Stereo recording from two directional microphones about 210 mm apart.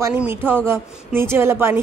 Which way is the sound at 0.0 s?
10° right (ahead or behind).